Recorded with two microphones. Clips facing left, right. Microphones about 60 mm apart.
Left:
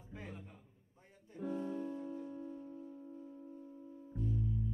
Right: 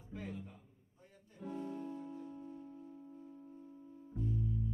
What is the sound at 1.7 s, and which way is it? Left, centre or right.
Music, left.